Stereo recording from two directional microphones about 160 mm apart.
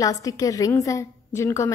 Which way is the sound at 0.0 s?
20° left (ahead or behind).